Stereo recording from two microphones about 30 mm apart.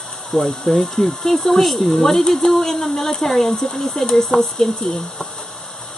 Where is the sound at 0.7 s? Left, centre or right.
Centre.